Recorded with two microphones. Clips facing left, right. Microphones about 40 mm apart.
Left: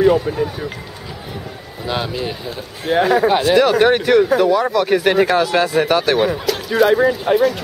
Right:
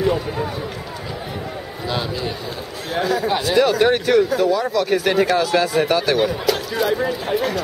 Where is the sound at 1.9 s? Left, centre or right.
Centre.